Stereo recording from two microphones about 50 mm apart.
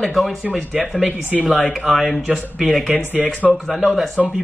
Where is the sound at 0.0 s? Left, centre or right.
Centre.